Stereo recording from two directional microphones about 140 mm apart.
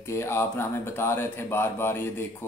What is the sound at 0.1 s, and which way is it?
Speech, 20° left (ahead or behind).